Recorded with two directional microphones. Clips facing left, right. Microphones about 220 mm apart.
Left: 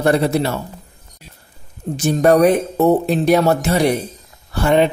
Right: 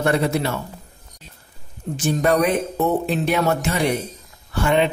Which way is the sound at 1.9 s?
40° left (ahead or behind).